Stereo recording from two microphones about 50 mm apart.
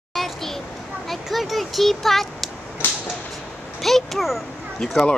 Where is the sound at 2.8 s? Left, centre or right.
Left.